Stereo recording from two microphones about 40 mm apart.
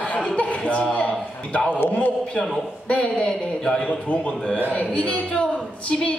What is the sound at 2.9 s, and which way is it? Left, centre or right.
A woman's voice, left.